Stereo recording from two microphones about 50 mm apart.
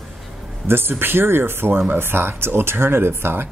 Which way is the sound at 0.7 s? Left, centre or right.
Right.